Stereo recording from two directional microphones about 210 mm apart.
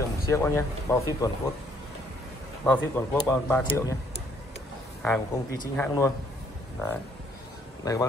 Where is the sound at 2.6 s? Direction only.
10° left (ahead or behind).